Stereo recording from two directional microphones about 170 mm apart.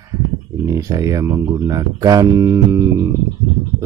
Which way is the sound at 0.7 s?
20° right (ahead or behind).